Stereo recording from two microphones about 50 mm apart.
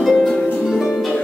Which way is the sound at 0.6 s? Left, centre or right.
Centre.